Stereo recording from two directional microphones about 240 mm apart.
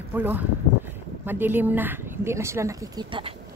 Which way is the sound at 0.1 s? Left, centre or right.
Centre.